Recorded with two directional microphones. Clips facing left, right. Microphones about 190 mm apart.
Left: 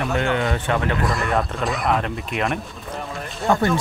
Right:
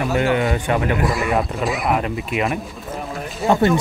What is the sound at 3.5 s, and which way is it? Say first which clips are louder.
Speech: right 3 dB; 20° right (ahead or behind).